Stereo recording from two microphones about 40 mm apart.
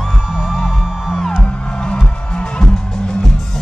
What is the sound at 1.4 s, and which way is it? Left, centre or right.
Music, left.